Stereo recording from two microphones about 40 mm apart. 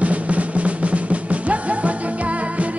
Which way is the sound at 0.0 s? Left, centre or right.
Right.